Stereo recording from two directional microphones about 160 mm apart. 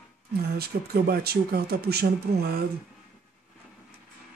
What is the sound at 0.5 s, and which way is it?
Speech, 75° right (ahead or behind).